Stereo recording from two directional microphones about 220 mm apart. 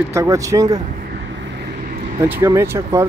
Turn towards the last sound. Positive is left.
turn(degrees=-10)  # may be behind; listen again after turning